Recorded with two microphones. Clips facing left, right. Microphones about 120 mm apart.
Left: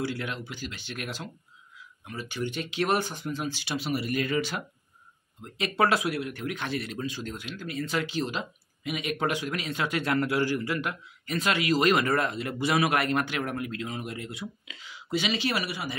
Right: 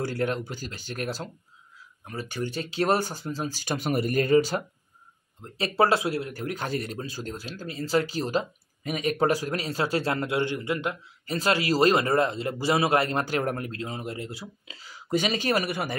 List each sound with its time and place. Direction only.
0.0 s speech: 45° right (ahead or behind)